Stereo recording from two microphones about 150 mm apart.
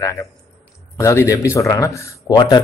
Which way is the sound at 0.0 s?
20° left (ahead or behind).